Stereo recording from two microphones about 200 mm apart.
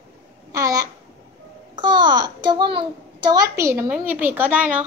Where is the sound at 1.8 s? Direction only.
20° right (ahead or behind).